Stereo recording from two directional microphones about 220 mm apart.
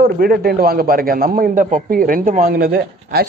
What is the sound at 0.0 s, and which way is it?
A man's voice, 45° right (ahead or behind).